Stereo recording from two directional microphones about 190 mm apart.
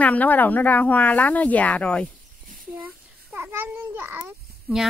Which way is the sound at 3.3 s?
10° right (ahead or behind).